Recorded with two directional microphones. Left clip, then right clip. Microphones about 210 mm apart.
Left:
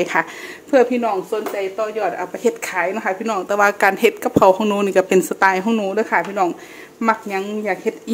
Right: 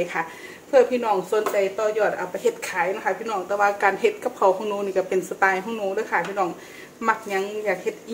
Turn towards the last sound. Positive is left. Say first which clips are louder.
# left 3 dB
turn(degrees=45)  # may be behind; listen again after turning